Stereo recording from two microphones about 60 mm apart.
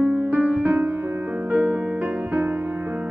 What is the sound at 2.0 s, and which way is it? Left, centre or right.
Music, right.